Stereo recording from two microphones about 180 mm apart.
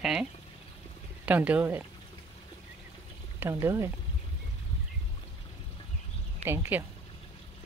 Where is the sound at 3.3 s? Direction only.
15° right (ahead or behind).